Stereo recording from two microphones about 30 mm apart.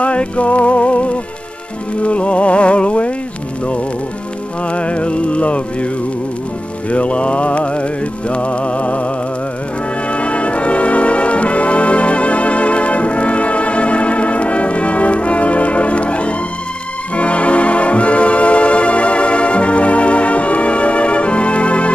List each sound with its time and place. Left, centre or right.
0.0 s music: left
4.6 s music: left
6.9 s mantra: left
8.3 s music: left
10.0 s brass instrument: left
17.1 s music: left